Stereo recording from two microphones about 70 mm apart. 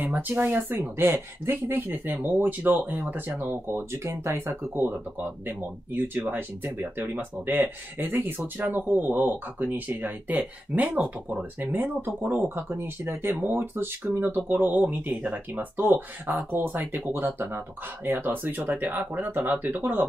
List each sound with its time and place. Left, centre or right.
0.0 s speech: right